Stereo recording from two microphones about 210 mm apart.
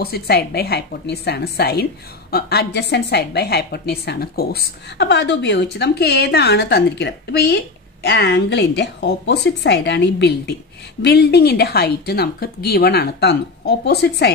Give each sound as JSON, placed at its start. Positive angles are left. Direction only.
{"t": 0.0, "sound": "a woman's voice", "side_deg": 50}